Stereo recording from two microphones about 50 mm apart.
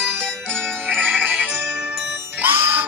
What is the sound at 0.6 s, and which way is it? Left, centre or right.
Jingle bell, right.